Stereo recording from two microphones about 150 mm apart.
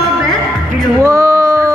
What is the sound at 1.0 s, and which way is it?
Female singing, 20° right (ahead or behind).